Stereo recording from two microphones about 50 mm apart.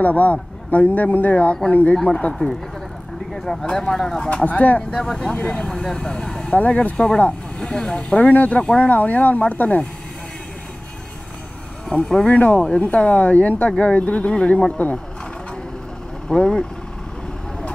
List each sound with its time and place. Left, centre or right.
0.0 s a man's voice: left
2.0 s speech: centre
3.7 s speech: centre
4.3 s speech: left
4.9 s speech: centre
6.5 s speech: left
7.2 s vehicle: left
7.7 s speech: centre
8.1 s a man's voice: left
11.9 s speech: centre
12.3 s a man's voice: left
12.5 s speech: centre
16.3 s speech: centre